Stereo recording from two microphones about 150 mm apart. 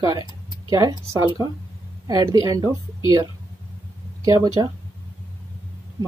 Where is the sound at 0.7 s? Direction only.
25° right (ahead or behind).